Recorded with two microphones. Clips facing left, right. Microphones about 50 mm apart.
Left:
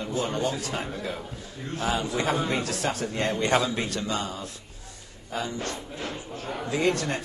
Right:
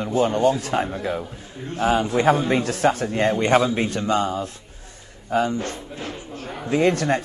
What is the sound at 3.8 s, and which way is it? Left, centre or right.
A man's voice, right.